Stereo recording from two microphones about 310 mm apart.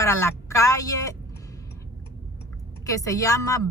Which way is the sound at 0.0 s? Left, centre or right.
Centre.